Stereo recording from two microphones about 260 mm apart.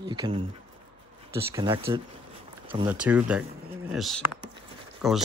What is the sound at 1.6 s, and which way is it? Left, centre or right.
Speech, centre.